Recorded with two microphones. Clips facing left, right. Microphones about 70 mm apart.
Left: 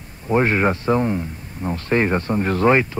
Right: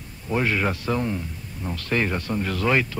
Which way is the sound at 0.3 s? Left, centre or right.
Left.